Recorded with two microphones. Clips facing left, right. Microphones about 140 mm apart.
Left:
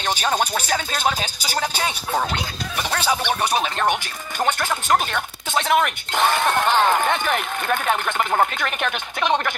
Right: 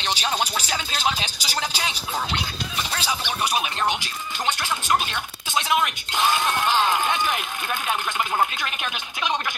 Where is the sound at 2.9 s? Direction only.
55° left (ahead or behind).